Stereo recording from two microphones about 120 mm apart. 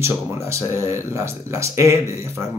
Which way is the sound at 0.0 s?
25° right (ahead or behind).